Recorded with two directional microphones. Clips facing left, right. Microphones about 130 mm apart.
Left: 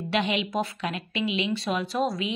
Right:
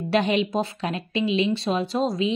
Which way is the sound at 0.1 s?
40° right (ahead or behind).